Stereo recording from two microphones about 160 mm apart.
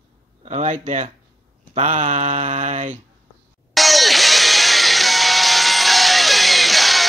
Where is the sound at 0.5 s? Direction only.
45° right (ahead or behind).